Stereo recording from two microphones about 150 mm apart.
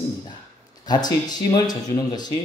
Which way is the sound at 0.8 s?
25° left (ahead or behind).